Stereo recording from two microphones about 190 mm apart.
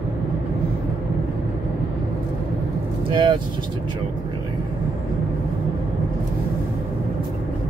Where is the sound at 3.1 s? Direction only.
25° right (ahead or behind).